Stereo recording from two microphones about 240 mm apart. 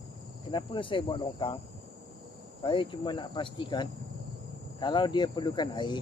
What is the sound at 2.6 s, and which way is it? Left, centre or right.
Speech, centre.